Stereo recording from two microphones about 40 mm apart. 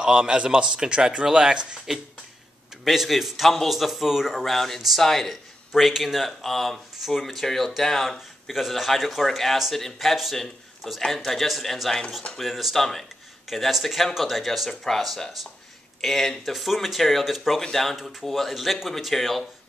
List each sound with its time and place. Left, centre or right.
0.0 s speech: right
2.8 s speech: centre
4.6 s speech: centre
5.3 s speech: centre
8.5 s speech: centre
12.4 s speech: centre
14.7 s speech: centre
17.6 s speech: centre